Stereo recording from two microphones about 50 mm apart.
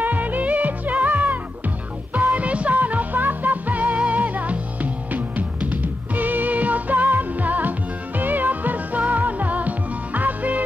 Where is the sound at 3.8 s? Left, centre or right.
Right.